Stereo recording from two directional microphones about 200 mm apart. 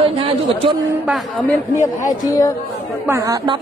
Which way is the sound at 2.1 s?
20° left (ahead or behind).